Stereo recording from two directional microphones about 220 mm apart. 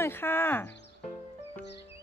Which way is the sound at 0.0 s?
10° left (ahead or behind).